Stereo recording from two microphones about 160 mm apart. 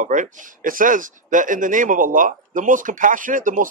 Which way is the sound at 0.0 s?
55° right (ahead or behind).